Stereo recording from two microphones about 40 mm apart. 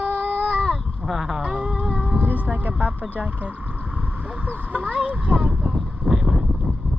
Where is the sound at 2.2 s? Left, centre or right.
Right.